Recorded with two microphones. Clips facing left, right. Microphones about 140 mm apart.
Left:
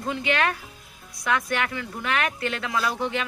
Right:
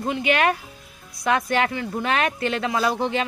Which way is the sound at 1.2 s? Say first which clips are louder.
Right 4 dB; 25° right (ahead or behind).